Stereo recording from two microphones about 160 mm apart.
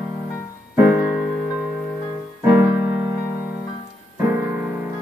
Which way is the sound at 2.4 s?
10° right (ahead or behind).